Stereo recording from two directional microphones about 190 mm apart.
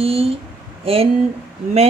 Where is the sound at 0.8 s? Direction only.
30° right (ahead or behind).